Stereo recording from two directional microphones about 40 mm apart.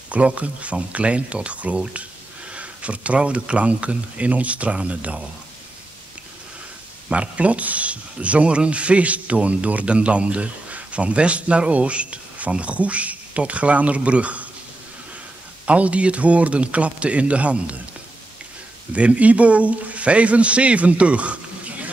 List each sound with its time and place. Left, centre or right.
0.1 s speech: right
7.1 s speech: right
15.6 s speech: right
18.9 s speech: right